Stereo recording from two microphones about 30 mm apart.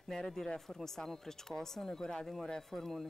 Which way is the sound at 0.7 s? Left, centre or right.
Centre.